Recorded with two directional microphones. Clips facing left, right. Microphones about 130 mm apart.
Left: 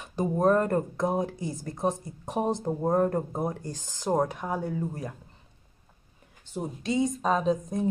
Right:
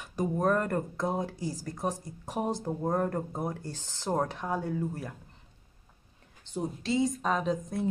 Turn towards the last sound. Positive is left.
turn(degrees=20)  # may be behind; listen again after turning